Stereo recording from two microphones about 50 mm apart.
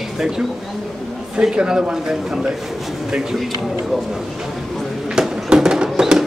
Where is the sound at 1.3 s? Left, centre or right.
Centre.